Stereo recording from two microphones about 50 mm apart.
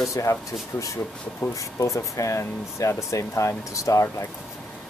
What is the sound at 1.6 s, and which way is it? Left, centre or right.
Speech, left.